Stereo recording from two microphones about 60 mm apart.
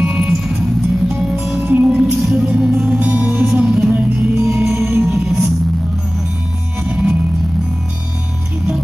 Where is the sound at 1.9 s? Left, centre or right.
Centre.